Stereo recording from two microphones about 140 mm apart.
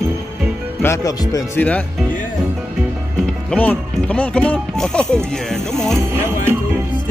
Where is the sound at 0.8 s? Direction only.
25° left (ahead or behind).